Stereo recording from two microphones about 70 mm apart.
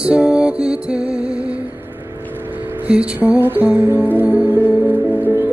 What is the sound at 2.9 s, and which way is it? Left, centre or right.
Music, centre.